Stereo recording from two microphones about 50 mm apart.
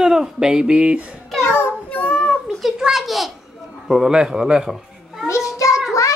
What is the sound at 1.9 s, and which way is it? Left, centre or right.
Child singing, left.